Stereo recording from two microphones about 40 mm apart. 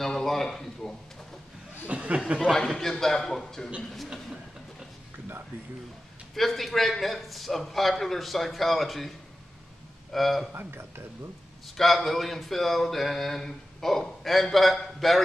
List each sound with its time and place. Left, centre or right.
0.0 s a man's voice: centre
1.9 s speech: right
2.5 s a man's voice: centre
6.3 s speech: centre
10.1 s speech: centre
10.5 s speech: right
11.7 s speech: centre